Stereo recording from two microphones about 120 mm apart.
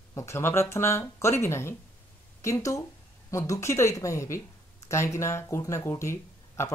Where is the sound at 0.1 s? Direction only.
25° left (ahead or behind).